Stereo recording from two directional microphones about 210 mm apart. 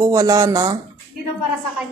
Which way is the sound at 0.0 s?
15° right (ahead or behind).